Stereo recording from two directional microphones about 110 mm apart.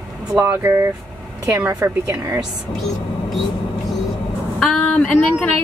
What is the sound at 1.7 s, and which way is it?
Speech, 35° right (ahead or behind).